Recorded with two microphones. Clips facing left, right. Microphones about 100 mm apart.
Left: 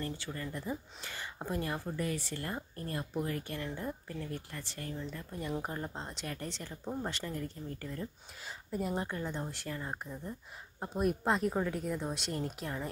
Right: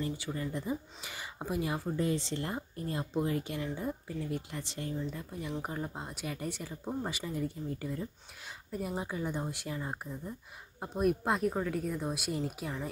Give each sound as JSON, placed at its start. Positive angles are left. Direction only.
{"t": 0.0, "sound": "speech", "side_deg": -15}
{"t": 4.9, "sound": "speech", "side_deg": -5}
{"t": 8.7, "sound": "a woman's voice", "side_deg": 0}